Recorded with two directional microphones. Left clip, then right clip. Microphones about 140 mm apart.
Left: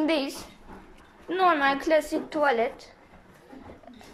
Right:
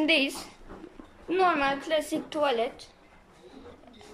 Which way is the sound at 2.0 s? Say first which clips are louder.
Left 4 dB; 15° right (ahead or behind).